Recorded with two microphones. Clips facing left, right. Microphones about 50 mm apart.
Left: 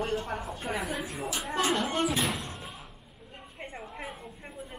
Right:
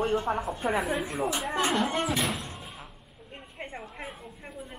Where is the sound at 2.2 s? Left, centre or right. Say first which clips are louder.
Even; centre.